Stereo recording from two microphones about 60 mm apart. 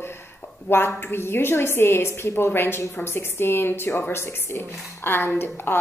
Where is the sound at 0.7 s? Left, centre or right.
Left.